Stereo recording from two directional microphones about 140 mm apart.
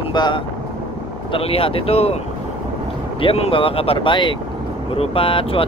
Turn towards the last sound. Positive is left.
turn(degrees=40)  # may be behind; listen again after turning